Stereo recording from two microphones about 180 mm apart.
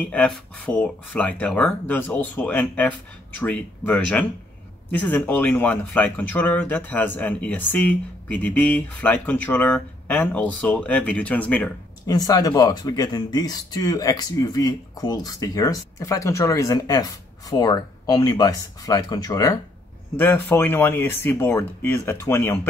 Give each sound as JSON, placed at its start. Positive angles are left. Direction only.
{"t": 0.0, "sound": "speech", "side_deg": 5}
{"t": 12.1, "sound": "speech", "side_deg": 20}